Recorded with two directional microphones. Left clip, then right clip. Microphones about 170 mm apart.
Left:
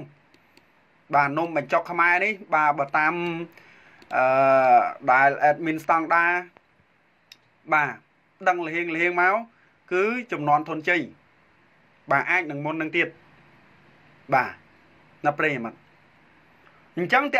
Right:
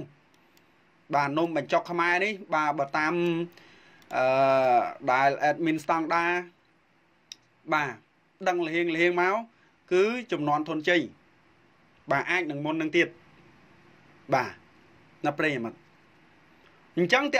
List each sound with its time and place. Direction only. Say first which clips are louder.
1.1 s speech: left 4 dB; 35° right (ahead or behind)
7.6 s speech: left 5 dB; 30° right (ahead or behind)
12.1 s speech: left 4 dB; 30° right (ahead or behind)
12.5 s speech: left 2 dB; 50° right (ahead or behind)
14.3 s speech: left 4 dB; 35° right (ahead or behind)
16.9 s speech: left 2 dB; 35° right (ahead or behind)